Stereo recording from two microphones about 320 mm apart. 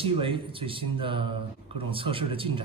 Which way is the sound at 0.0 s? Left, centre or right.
Centre.